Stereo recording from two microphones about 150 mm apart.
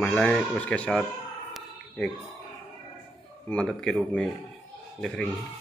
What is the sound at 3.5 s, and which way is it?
Speech, 5° left (ahead or behind).